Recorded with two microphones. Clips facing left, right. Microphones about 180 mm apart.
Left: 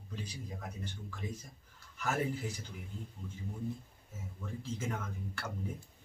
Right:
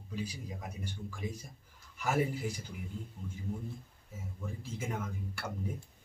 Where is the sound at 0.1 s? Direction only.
10° right (ahead or behind).